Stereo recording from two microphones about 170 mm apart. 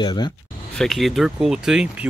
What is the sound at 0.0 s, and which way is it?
Speech, 25° left (ahead or behind).